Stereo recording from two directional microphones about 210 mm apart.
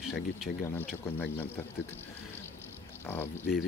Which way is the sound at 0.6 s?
10° left (ahead or behind).